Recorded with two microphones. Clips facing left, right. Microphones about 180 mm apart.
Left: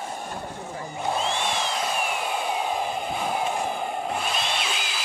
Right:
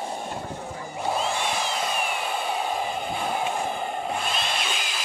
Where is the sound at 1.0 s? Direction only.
5° right (ahead or behind).